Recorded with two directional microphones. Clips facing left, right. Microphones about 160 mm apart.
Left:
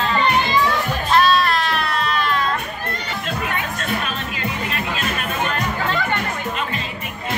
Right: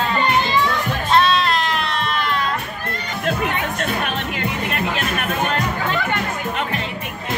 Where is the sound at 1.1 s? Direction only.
25° right (ahead or behind).